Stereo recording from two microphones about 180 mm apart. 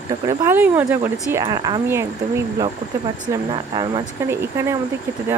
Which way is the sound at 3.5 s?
25° right (ahead or behind).